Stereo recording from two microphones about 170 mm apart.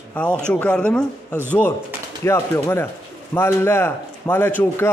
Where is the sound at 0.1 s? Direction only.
5° left (ahead or behind).